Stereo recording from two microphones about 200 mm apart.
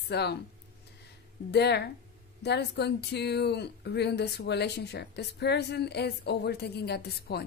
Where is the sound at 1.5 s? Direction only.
55° left (ahead or behind).